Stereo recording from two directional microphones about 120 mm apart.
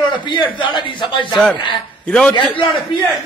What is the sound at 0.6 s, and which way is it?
Speech, 45° left (ahead or behind).